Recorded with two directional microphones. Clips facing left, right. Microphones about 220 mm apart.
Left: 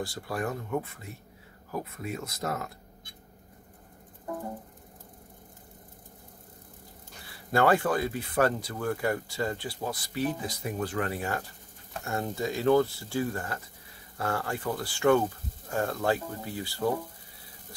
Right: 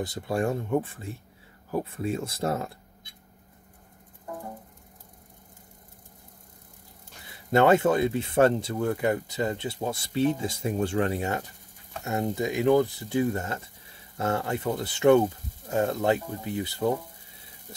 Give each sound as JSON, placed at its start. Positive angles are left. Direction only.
{"t": 0.0, "sound": "speech", "side_deg": -25}
{"t": 7.2, "sound": "speech", "side_deg": -20}